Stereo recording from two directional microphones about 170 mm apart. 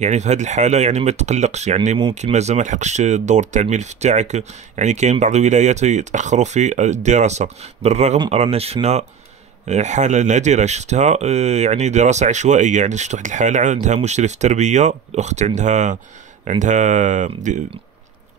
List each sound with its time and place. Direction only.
0.0 s speech: 40° right (ahead or behind)